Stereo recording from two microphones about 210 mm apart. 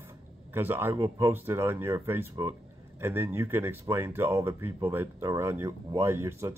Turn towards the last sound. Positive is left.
turn(degrees=-10)  # may be behind; listen again after turning